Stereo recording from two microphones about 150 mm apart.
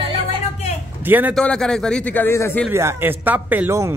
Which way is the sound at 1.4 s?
5° left (ahead or behind).